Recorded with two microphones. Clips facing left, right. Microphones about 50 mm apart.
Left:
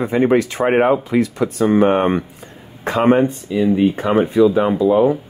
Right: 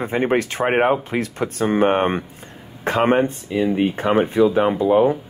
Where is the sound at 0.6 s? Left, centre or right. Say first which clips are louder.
Left 2 dB; right.